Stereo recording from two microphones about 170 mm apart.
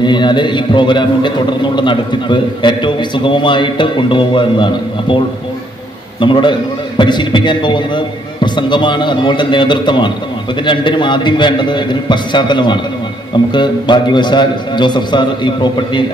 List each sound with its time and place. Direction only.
0.0 s speech: 25° left (ahead or behind)
6.2 s speech: 30° left (ahead or behind)